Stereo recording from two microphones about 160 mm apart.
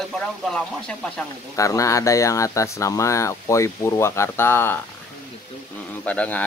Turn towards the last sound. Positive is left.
turn(degrees=10)  # may be behind; listen again after turning